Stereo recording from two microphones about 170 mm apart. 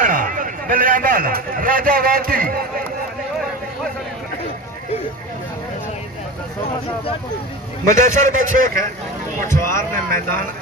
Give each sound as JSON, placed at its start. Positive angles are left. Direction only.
{"t": 0.0, "sound": "a man's voice", "side_deg": -50}
{"t": 7.8, "sound": "a man's voice", "side_deg": -50}
{"t": 9.5, "sound": "speech", "side_deg": 15}
{"t": 10.0, "sound": "speech", "side_deg": -55}